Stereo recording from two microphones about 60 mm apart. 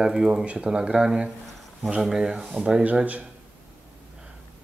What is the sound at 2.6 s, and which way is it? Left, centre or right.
Speech, right.